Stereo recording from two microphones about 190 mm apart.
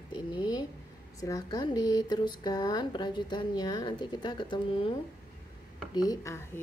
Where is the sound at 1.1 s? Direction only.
15° left (ahead or behind).